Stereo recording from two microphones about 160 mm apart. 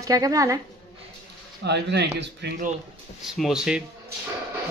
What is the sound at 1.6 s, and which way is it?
Speech, 90° right.